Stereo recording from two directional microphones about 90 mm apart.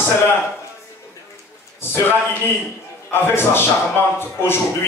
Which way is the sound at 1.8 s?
25° left (ahead or behind).